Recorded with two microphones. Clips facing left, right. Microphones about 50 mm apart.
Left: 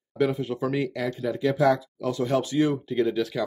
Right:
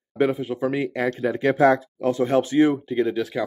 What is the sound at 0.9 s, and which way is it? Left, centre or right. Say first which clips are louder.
Speech: right 5 dB; right.